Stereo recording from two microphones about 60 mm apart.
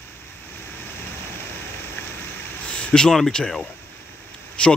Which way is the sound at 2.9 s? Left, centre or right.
Centre.